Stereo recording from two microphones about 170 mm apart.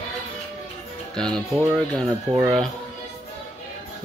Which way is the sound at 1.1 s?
5° left (ahead or behind).